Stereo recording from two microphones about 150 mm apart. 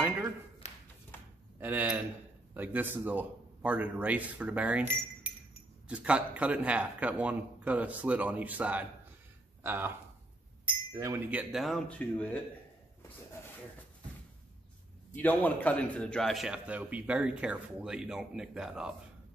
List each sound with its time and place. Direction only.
0.6 s tap: 50° left (ahead or behind)
1.6 s a man's voice: 10° right (ahead or behind); by 12.4 s 10° left (ahead or behind)
15.1 s a man's voice: 10° left (ahead or behind); by 18.9 s 5° right (ahead or behind)